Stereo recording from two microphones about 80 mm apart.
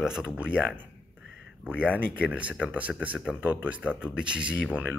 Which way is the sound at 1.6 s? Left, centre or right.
Centre.